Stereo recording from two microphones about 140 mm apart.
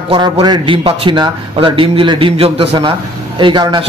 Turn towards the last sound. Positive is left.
turn(degrees=-30)  # may be behind; listen again after turning